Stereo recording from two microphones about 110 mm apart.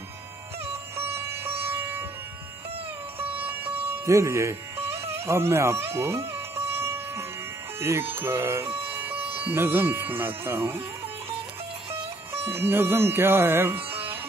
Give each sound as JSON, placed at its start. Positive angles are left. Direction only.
{"t": 0.9, "sound": "music", "side_deg": -20}
{"t": 3.3, "sound": "music", "side_deg": -15}
{"t": 8.1, "sound": "speech", "side_deg": -20}
{"t": 11.9, "sound": "music", "side_deg": -20}